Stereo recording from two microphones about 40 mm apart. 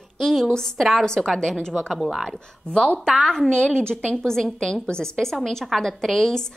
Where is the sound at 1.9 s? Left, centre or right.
Centre.